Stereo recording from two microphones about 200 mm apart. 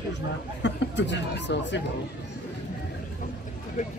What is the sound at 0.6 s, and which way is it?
Speech, 60° left (ahead or behind).